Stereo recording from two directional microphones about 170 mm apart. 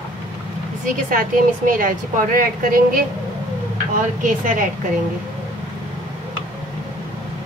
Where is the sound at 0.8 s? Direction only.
55° right (ahead or behind).